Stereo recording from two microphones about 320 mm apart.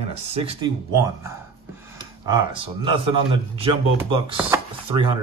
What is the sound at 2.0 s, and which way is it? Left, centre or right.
Speech, centre.